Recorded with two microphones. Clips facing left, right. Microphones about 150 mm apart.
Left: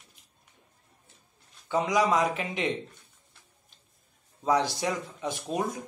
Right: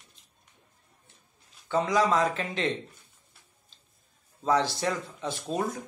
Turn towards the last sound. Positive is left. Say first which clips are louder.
# even
turn(degrees=15)  # may be behind; listen again after turning